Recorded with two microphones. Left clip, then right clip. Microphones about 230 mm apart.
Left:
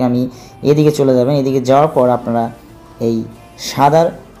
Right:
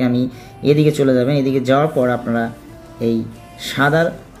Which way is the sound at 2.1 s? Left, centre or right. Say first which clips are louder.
Left 5 dB; left.